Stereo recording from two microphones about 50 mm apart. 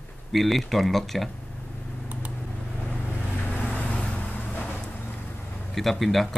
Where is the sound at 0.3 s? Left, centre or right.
Centre.